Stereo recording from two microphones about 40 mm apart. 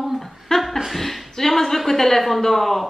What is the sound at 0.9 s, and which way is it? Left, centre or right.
A woman's voice, centre.